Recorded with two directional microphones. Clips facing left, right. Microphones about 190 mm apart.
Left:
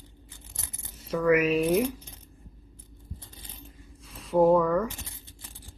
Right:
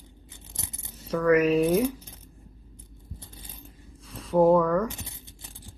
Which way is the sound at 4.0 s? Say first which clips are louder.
Right 1 dB; centre (ahead or behind).